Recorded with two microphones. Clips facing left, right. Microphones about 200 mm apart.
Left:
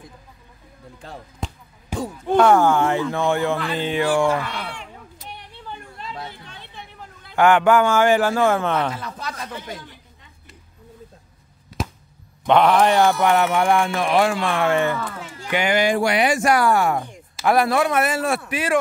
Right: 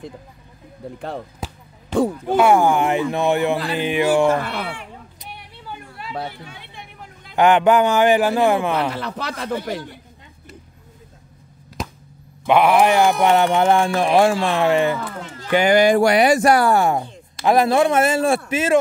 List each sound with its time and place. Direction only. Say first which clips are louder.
0.9 s speech: right 9 dB; 65° right (ahead or behind)
1.4 s basketball bounce: even; 5° right (ahead or behind)
2.2 s a man's voice: left 2 dB; 10° right (ahead or behind)
4.4 s speech: right 3 dB; 55° right (ahead or behind)
5.2 s vehicle: left 2 dB; 10° right (ahead or behind)
6.4 s a sound: right 3 dB; 10° right (ahead or behind)
7.2 s a man's voice: right 1 dB; 20° right (ahead or behind)
8.9 s speech: right 4 dB; 70° right (ahead or behind)
12.4 s speech: right 1 dB; 10° right (ahead or behind)
15.1 s speech: right 2 dB; 10° left (ahead or behind)
15.5 s speech: right 5 dB; 40° right (ahead or behind)